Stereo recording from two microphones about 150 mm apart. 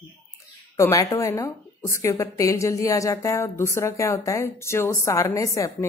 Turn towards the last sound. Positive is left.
turn(degrees=20)  # may be behind; listen again after turning